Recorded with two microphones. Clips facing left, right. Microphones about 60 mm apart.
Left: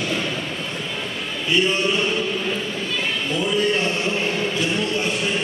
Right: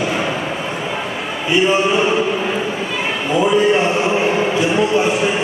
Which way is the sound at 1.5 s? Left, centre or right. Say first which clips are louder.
Right 5 dB; centre.